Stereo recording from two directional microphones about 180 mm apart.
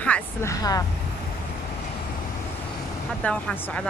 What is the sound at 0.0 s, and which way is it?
Speech, 10° left (ahead or behind).